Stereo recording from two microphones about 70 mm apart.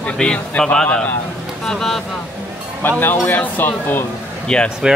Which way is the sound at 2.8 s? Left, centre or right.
Left.